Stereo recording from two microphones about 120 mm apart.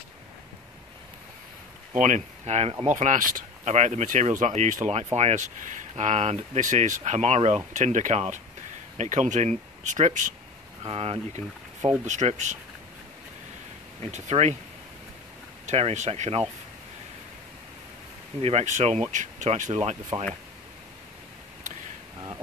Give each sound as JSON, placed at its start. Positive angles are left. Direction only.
{"t": 2.0, "sound": "speech", "side_deg": -80}
{"t": 2.9, "sound": "speech", "side_deg": -90}
{"t": 10.8, "sound": "speech", "side_deg": -55}
{"t": 12.0, "sound": "speech", "side_deg": -85}
{"t": 14.0, "sound": "speech", "side_deg": -60}
{"t": 15.6, "sound": "speech", "side_deg": -70}
{"t": 18.4, "sound": "speech", "side_deg": -65}
{"t": 21.7, "sound": "a sound", "side_deg": -90}